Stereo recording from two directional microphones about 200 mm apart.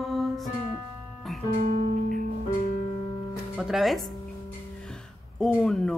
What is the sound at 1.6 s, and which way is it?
Music, 45° right (ahead or behind).